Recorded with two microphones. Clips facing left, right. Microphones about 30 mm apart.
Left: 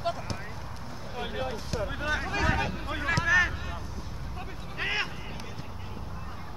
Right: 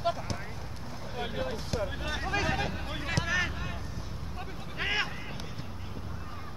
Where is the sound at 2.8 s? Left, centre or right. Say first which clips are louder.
Left 4 dB; left.